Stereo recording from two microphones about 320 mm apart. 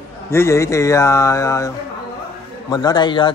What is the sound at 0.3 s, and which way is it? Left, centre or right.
A man's voice, centre.